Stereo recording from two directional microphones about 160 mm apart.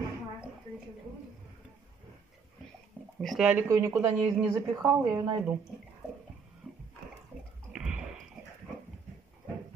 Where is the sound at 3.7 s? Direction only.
20° right (ahead or behind).